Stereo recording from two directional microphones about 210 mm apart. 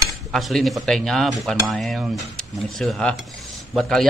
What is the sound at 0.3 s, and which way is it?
Speech, centre (ahead or behind).